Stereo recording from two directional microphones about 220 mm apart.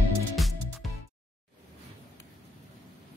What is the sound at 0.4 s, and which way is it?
Music, centre (ahead or behind).